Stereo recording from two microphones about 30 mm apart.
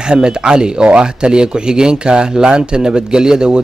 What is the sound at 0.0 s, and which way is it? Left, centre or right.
Speech, right.